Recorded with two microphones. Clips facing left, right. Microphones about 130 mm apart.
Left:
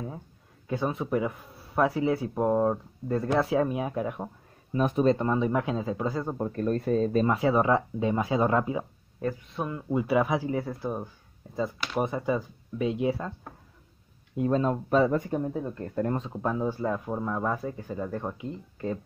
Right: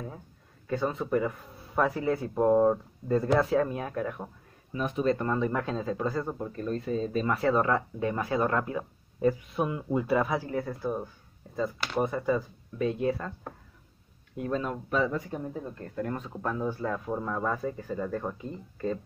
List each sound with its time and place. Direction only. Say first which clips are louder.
0.7 s speech: even; 15° left (ahead or behind)
4.7 s speech: left 5 dB; 40° left (ahead or behind)
5.0 s speech: left 1 dB; 20° left (ahead or behind)
6.3 s speech: left 5 dB; 45° left (ahead or behind)
7.2 s speech: left 2 dB; 15° left (ahead or behind)
9.2 s speech: right 5 dB; 10° right (ahead or behind)
9.9 s speech: left 2 dB; 10° left (ahead or behind)
14.3 s speech: left 6 dB; 25° left (ahead or behind); by 15.2 s 45° left (ahead or behind)
15.9 s speech: left 4 dB; 30° left (ahead or behind); by 18.9 s 10° left (ahead or behind)